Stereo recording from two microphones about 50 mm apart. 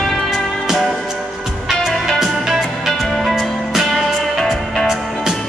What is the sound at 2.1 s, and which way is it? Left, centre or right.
Music, centre.